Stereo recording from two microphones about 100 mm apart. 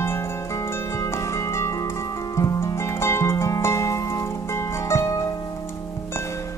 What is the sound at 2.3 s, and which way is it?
Music, 30° left (ahead or behind).